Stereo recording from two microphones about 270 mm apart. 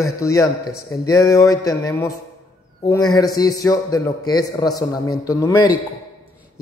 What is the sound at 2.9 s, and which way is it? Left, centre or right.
Speech, centre.